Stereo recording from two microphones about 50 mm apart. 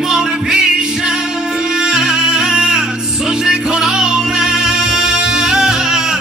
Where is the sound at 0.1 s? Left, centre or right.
Centre.